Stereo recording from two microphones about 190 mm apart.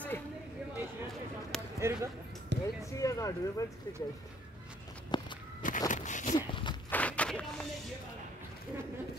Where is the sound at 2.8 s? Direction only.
15° left (ahead or behind).